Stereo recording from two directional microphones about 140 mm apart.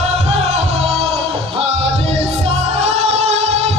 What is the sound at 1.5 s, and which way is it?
Music, 45° right (ahead or behind).